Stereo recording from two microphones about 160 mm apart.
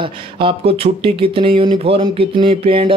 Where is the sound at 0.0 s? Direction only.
30° right (ahead or behind).